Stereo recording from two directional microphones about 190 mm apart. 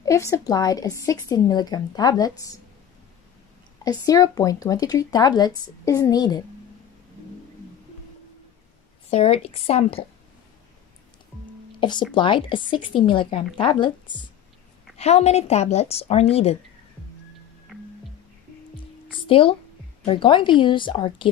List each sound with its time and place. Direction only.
0.0 s a woman's voice: 15° left (ahead or behind)
3.8 s a woman's voice: 20° left (ahead or behind)
9.1 s speech: 30° left (ahead or behind)
11.8 s a woman's voice: 25° left (ahead or behind)
19.2 s a woman's voice: 30° left (ahead or behind)